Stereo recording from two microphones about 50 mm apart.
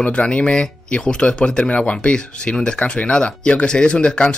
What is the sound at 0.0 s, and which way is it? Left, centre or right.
Speech, left.